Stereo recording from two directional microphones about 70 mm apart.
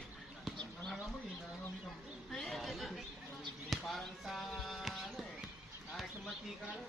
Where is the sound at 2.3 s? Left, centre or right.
Centre.